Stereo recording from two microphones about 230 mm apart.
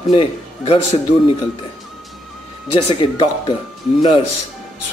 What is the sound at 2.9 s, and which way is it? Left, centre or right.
Speech, left.